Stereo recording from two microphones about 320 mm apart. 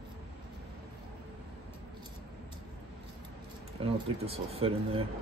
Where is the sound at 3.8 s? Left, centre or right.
Centre.